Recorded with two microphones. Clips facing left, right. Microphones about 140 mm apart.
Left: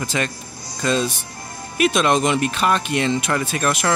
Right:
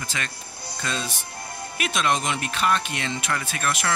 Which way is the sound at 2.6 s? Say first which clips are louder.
Left 5 dB; 30° left (ahead or behind).